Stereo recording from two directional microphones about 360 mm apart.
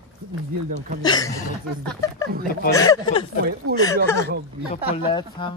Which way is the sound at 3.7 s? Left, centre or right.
Right.